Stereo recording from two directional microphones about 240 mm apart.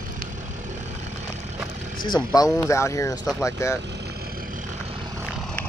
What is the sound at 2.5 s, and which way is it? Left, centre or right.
Speech, centre.